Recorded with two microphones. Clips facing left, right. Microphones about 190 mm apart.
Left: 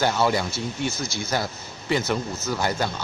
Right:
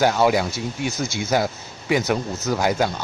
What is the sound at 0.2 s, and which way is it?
Speech, 15° right (ahead or behind).